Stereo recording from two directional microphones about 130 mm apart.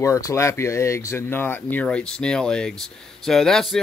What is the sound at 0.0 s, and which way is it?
Speech, 25° left (ahead or behind).